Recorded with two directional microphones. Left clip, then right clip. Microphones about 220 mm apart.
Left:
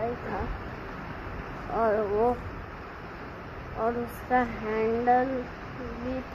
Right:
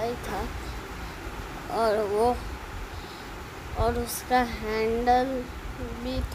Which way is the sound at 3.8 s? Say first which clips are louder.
Right 2 dB; 20° right (ahead or behind).